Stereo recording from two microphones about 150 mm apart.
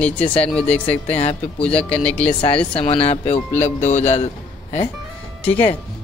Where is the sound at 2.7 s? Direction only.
40° left (ahead or behind).